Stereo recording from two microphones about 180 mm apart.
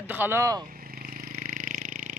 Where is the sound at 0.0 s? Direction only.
10° right (ahead or behind).